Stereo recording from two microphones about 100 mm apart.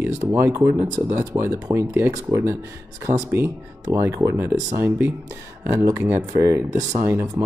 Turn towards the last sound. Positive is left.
turn(degrees=-30)  # may be behind; listen again after turning